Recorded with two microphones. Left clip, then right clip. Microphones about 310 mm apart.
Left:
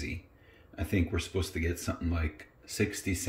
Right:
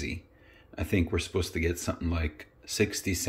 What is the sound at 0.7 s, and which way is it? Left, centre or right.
Speech, centre.